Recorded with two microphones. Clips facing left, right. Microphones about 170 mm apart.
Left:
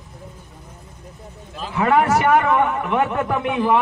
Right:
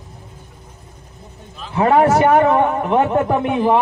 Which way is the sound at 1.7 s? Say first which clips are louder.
Right 4 dB; 30° right (ahead or behind).